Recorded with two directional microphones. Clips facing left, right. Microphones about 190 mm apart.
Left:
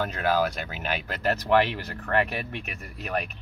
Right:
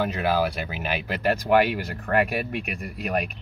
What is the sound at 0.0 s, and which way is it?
Speech, 10° right (ahead or behind).